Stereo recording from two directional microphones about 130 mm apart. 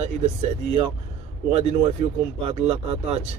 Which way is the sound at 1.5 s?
50° right (ahead or behind).